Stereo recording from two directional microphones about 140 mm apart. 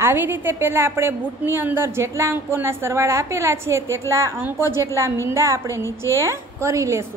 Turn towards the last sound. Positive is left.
turn(degrees=-20)  # may be behind; listen again after turning